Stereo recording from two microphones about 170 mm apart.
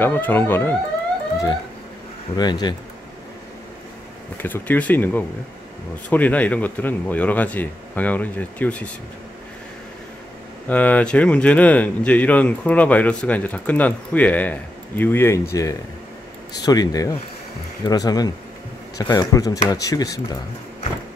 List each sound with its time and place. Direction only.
0.0 s speech: 10° left (ahead or behind)
2.3 s speech: 25° left (ahead or behind)
4.4 s speech: 10° left (ahead or behind)
10.7 s speech: 10° left (ahead or behind)